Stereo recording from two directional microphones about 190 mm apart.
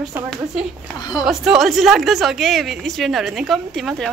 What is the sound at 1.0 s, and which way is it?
Speech, 20° left (ahead or behind).